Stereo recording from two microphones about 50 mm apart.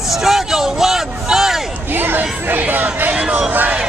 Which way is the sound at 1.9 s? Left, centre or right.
Right.